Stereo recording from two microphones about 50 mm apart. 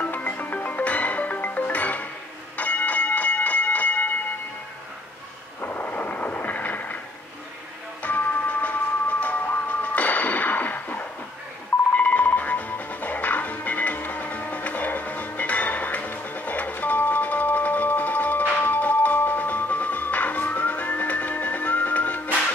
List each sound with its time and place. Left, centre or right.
0.0 s music: left
2.5 s a sound: left
5.6 s thunder: left
8.0 s doorbell: left
9.2 s music: left